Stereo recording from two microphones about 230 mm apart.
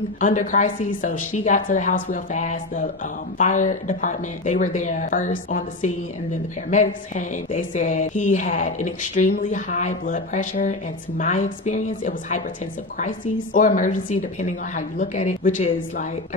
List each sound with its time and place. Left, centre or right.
0.2 s a woman's voice: left
15.0 s a woman's voice: left